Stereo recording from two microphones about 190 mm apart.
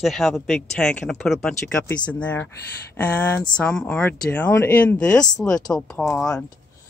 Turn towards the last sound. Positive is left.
turn(degrees=5)  # may be behind; listen again after turning